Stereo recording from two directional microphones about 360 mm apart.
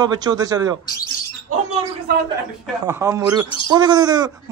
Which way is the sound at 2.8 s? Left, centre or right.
Centre.